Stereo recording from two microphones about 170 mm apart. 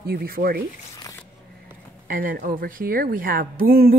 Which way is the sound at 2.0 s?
55° right (ahead or behind).